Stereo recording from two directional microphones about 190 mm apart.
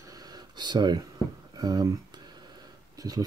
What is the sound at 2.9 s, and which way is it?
Speech, 20° right (ahead or behind).